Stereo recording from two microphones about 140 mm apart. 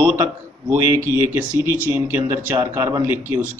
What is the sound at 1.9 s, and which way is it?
A man's voice, 15° right (ahead or behind).